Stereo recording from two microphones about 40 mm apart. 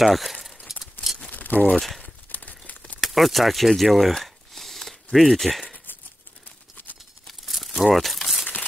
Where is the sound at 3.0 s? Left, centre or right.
Centre.